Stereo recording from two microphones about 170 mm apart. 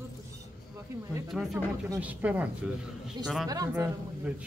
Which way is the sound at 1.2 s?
5° right (ahead or behind).